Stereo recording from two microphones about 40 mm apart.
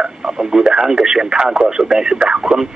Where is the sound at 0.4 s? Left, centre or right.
Centre.